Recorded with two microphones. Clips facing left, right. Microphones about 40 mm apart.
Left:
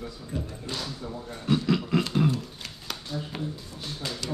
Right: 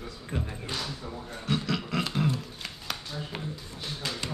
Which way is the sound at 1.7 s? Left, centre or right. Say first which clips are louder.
Left 4 dB; centre.